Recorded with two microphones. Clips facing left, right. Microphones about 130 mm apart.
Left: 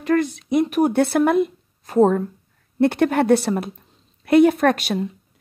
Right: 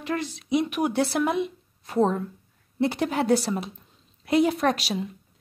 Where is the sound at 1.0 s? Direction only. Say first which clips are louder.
Left 7 dB; 55° left (ahead or behind).